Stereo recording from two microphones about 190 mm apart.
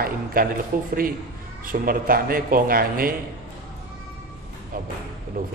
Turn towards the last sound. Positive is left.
turn(degrees=-50)  # may be behind; listen again after turning